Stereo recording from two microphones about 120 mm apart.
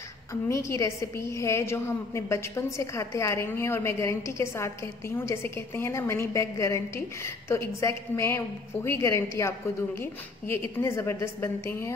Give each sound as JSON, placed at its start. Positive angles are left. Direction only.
{"t": 0.3, "sound": "a woman's voice", "side_deg": 25}
{"t": 10.5, "sound": "a woman's voice", "side_deg": 20}